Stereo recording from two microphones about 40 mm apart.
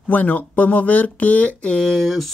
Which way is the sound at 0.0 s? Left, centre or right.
Left.